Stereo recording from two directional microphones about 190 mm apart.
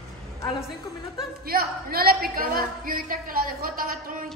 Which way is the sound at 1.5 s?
50° right (ahead or behind).